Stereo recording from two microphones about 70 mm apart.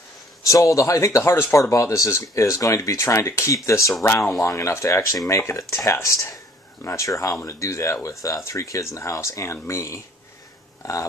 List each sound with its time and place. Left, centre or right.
0.4 s speech: left
4.0 s speech: left
4.4 s speech: left